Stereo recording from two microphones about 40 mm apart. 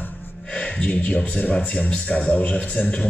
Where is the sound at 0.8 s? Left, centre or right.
Left.